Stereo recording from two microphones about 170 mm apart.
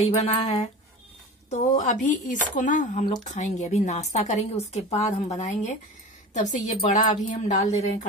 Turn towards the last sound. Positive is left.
turn(degrees=45)  # may be behind; listen again after turning